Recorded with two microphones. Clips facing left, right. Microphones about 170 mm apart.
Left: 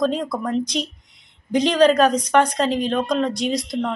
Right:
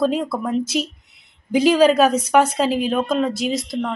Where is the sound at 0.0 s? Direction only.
5° right (ahead or behind).